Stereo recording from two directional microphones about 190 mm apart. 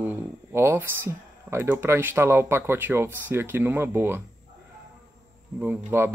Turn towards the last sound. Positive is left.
turn(degrees=-15)  # may be behind; listen again after turning